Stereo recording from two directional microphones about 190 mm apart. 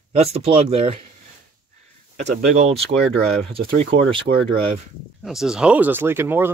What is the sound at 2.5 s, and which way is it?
Speech, 35° right (ahead or behind).